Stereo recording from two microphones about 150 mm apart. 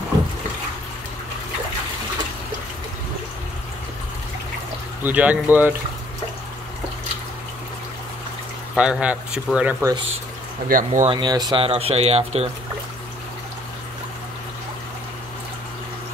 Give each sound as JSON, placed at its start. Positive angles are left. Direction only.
{"t": 5.0, "sound": "speech", "side_deg": -10}
{"t": 8.7, "sound": "speech", "side_deg": -5}
{"t": 10.7, "sound": "speech", "side_deg": -60}
{"t": 11.1, "sound": "speech", "side_deg": -30}